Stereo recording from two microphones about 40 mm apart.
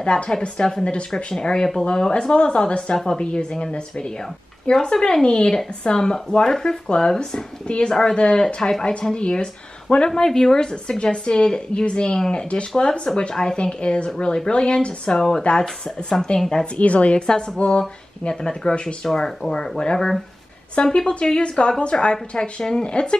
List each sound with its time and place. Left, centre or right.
0.0 s a woman's voice: left
3.3 s speech: left
7.6 s speech: left
10.0 s speech: centre
15.1 s speech: centre
16.7 s a woman's voice: left
18.3 s speech: centre